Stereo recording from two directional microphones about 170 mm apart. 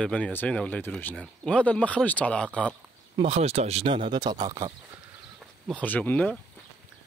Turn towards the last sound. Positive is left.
turn(degrees=10)  # may be behind; listen again after turning